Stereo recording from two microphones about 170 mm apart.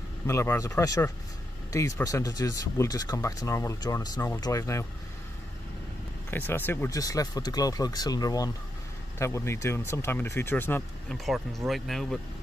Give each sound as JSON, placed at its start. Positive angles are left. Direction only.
{"t": 0.3, "sound": "speech", "side_deg": 15}
{"t": 6.3, "sound": "speech", "side_deg": 10}
{"t": 11.2, "sound": "speech", "side_deg": 0}